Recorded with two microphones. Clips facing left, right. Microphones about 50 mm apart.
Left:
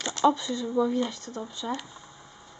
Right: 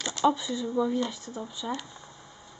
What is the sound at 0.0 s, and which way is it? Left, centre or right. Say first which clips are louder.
Speech: left 2 dB; centre.